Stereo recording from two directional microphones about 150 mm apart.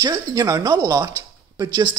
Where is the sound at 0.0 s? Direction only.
25° right (ahead or behind).